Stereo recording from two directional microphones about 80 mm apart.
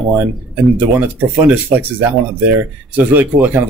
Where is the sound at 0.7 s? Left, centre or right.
Right.